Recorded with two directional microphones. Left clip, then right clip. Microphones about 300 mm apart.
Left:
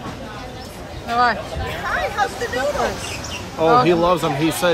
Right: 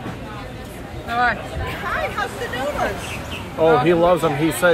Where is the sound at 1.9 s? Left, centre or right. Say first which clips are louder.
Left 3 dB; left.